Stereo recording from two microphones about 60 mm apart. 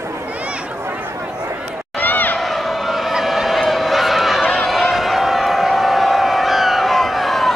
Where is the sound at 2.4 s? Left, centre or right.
Centre.